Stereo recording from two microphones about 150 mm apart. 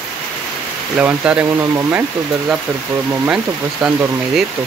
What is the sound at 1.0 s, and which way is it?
Speech, 10° right (ahead or behind).